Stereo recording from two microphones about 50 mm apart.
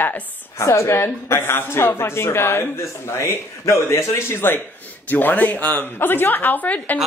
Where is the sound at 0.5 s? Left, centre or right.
Left.